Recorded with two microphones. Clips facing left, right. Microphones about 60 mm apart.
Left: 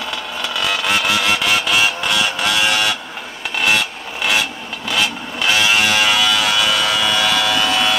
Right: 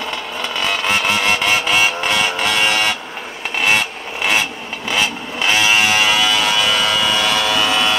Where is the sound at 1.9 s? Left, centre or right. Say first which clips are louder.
Right 1 dB; right.